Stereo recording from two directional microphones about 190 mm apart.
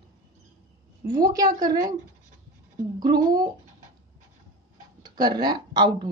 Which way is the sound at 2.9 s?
20° right (ahead or behind).